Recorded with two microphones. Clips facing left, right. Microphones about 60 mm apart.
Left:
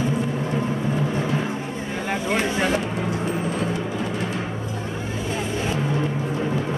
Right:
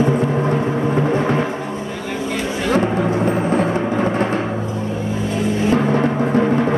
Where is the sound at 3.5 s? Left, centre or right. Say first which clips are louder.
Right 8 dB; right.